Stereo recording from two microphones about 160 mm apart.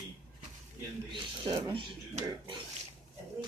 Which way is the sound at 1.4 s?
30° right (ahead or behind).